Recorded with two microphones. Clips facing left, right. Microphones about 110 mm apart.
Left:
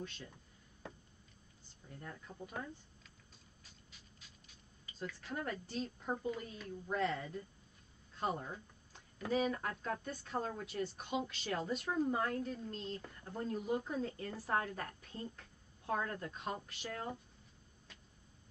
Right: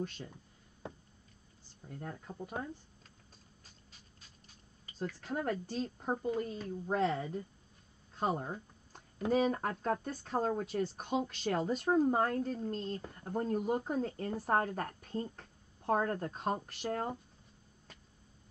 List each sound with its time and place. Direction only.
1.9 s speech: 45° right (ahead or behind)
4.9 s speech: 35° right (ahead or behind)
8.4 s a sound: 45° right (ahead or behind)
9.3 s speech: 40° right (ahead or behind)
13.0 s speech: 30° right (ahead or behind)
13.3 s speech: 45° right (ahead or behind)